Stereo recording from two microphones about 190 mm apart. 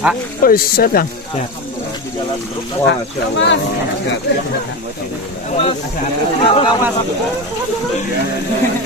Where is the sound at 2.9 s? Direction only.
70° left (ahead or behind).